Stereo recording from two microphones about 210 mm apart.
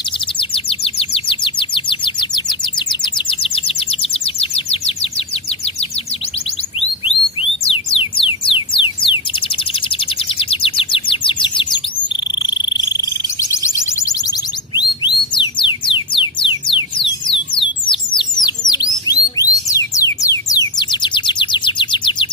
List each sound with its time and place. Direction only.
0.4 s bird: 25° left (ahead or behind)
7.6 s a sound: 25° left (ahead or behind)
10.5 s bird: 25° left (ahead or behind)
12.4 s a sound: 20° left (ahead or behind)
14.8 s music: 20° left (ahead or behind)
20.2 s bird: 15° left (ahead or behind)